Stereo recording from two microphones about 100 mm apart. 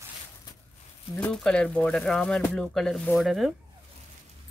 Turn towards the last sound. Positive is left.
turn(degrees=0)  # may be behind; listen again after turning